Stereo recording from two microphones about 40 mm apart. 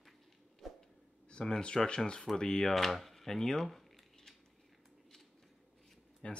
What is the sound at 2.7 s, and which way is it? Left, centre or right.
Speech, centre.